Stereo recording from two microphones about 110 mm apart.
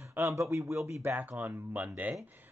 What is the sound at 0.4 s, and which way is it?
Speech, 25° right (ahead or behind).